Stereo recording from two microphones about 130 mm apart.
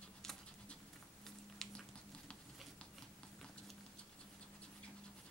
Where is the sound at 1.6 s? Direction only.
5° left (ahead or behind).